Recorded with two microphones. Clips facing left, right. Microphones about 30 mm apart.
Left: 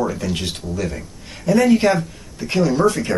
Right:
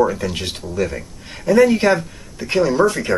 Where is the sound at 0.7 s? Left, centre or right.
Centre.